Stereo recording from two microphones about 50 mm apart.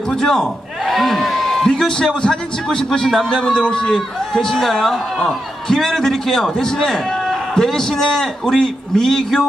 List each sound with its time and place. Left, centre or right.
0.2 s a man's voice: centre
3.4 s speech: centre